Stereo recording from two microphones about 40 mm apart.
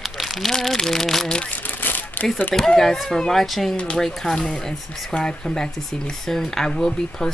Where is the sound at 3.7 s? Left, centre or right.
Left.